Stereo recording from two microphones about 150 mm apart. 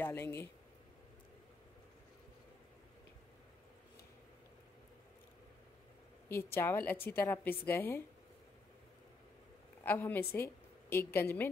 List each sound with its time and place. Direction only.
0.0 s speech: 15° left (ahead or behind)
6.2 s a woman's voice: 15° left (ahead or behind)
9.8 s a woman's voice: 15° left (ahead or behind)